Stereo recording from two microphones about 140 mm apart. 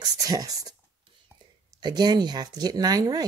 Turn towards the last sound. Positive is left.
turn(degrees=-25)  # may be behind; listen again after turning